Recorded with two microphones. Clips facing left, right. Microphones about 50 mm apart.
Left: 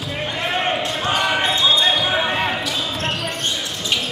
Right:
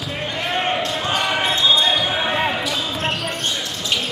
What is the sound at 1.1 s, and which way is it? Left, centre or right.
Basketball bounce, centre.